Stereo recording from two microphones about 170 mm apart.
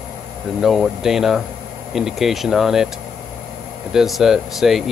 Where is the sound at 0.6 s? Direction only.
Centre (ahead or behind).